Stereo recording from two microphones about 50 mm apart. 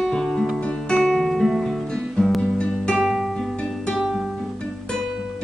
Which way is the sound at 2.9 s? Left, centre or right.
Centre.